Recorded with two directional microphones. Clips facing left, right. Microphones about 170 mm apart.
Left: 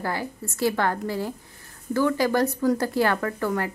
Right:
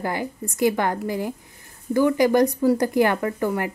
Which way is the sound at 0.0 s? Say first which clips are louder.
Right 3 dB; 15° right (ahead or behind).